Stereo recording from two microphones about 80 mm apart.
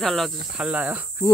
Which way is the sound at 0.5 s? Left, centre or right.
Centre.